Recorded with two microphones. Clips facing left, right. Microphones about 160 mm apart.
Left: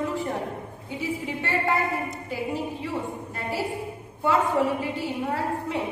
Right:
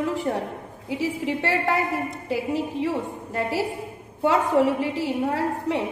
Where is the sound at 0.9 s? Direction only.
90° right.